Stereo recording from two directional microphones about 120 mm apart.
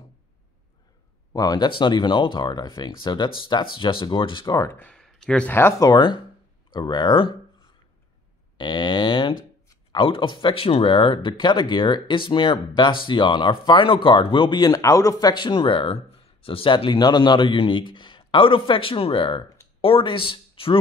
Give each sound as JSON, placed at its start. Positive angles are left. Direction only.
{"t": 1.3, "sound": "speech", "side_deg": 35}
{"t": 4.7, "sound": "speech", "side_deg": 10}
{"t": 5.5, "sound": "speech", "side_deg": 20}
{"t": 8.5, "sound": "a sound", "side_deg": 40}
{"t": 9.9, "sound": "speech", "side_deg": 45}